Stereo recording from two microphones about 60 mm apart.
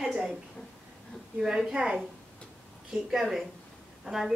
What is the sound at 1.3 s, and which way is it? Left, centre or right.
A woman's voice, centre.